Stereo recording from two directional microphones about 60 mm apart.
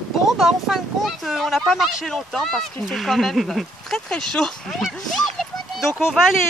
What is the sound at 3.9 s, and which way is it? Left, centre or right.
Speech, centre.